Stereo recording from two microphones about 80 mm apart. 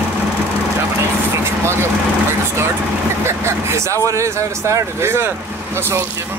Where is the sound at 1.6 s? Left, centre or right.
Right.